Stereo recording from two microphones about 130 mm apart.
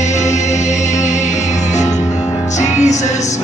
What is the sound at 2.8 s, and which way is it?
Music, 65° left (ahead or behind).